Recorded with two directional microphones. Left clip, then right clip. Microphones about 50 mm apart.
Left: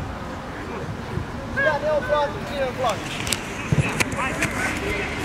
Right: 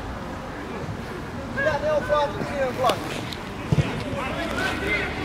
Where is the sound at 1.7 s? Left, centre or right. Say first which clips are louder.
Left 1 dB; centre.